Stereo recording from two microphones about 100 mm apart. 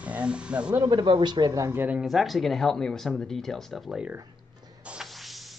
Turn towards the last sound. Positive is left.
turn(degrees=0)  # may be behind; listen again after turning